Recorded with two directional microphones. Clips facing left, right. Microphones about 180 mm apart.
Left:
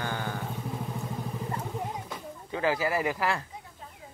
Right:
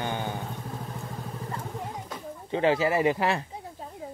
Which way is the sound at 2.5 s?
25° right (ahead or behind).